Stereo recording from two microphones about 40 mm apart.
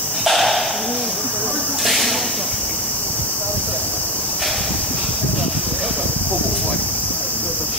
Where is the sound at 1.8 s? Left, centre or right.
Centre.